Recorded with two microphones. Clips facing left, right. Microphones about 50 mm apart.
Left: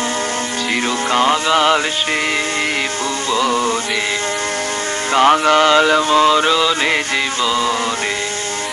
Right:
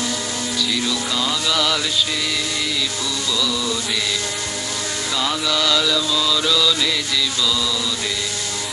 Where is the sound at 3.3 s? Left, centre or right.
Left.